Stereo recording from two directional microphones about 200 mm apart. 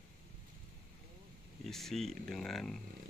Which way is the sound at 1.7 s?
Centre (ahead or behind).